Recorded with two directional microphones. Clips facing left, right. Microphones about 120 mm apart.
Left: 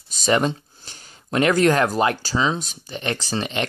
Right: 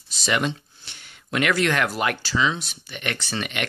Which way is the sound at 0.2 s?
40° left (ahead or behind).